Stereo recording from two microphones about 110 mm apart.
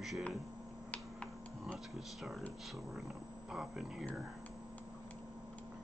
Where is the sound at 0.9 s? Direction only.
10° left (ahead or behind).